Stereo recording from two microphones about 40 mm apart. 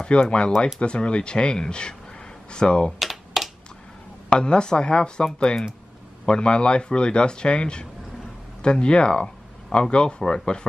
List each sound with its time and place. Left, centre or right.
0.2 s speech: left
3.0 s computer keyboard: centre
4.3 s speech: left